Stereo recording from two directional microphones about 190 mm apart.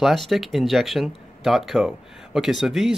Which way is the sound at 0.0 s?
Centre (ahead or behind).